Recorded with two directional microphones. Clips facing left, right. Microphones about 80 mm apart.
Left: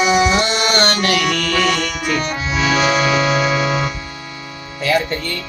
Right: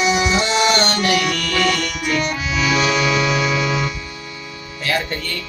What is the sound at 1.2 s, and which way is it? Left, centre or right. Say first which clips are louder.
Music: left 2 dB; left.